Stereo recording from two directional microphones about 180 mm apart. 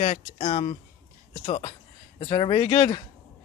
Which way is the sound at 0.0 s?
35° left (ahead or behind).